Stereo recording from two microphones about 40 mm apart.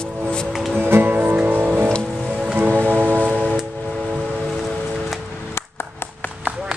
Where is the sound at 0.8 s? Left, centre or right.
Right.